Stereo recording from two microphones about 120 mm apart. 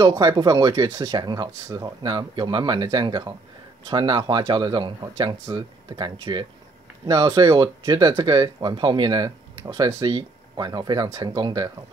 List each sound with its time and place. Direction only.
0.0 s speech: 35° right (ahead or behind)